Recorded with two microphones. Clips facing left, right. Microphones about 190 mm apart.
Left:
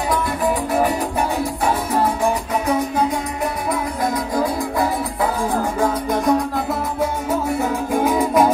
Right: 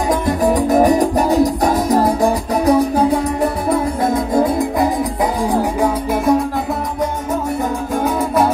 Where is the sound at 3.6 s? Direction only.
25° right (ahead or behind).